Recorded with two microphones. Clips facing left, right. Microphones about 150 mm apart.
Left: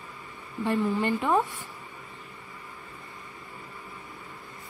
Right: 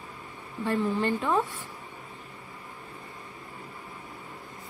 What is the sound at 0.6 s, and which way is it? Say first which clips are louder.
Speech: left 1 dB; 15° left (ahead or behind).